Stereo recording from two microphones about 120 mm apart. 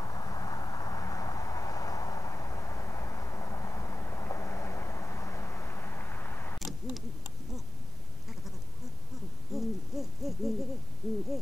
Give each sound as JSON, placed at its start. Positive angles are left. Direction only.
{"t": 0.0, "sound": "vehicle", "side_deg": 30}
{"t": 9.5, "sound": "hoot", "side_deg": 0}